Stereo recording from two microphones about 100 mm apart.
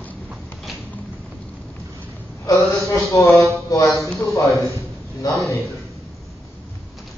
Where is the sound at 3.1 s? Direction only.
30° left (ahead or behind).